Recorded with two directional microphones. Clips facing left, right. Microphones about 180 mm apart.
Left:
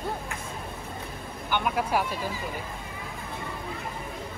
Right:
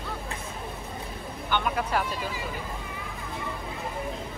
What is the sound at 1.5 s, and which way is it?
Speech, 10° left (ahead or behind).